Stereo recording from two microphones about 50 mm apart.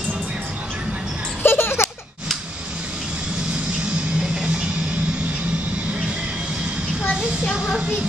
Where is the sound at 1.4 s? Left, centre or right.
Left.